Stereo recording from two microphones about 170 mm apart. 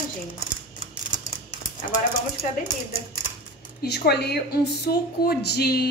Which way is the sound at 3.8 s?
75° left (ahead or behind).